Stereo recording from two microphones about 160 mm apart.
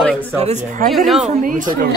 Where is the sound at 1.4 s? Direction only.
60° right (ahead or behind).